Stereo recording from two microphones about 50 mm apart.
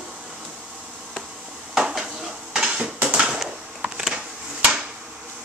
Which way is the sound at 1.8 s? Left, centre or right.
Centre.